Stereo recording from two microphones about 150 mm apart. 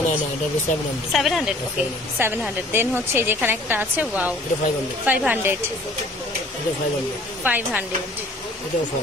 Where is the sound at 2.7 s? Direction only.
15° right (ahead or behind).